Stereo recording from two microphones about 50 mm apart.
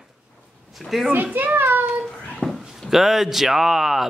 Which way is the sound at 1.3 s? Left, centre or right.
Right.